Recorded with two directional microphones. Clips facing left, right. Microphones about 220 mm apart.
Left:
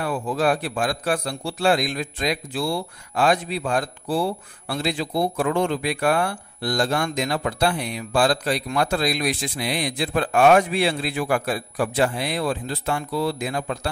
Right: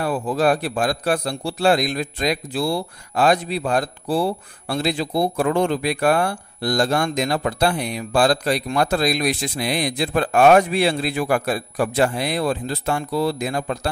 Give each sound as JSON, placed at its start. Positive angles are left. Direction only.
{"t": 0.0, "sound": "a man's voice", "side_deg": -35}